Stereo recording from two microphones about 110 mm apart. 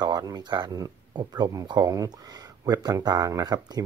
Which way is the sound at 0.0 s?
35° right (ahead or behind).